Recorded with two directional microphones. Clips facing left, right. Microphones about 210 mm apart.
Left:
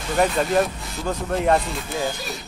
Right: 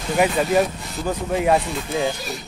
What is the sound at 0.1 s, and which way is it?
Speech, 5° right (ahead or behind).